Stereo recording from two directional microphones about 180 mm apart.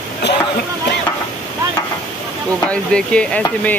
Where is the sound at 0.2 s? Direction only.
70° left (ahead or behind).